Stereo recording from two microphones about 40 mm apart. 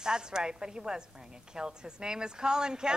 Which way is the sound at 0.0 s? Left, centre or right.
Centre.